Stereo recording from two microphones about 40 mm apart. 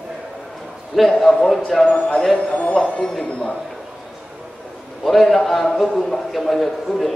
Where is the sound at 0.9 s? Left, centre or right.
Centre.